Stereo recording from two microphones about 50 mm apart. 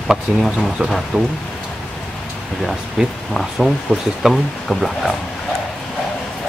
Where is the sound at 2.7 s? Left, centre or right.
Centre.